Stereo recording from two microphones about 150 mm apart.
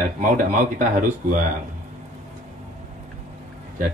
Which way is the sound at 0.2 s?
60° right (ahead or behind).